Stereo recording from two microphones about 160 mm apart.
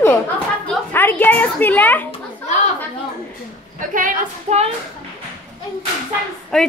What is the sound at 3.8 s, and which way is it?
Speech, 55° right (ahead or behind).